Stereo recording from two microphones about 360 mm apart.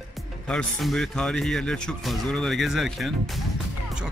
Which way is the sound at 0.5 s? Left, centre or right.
Centre.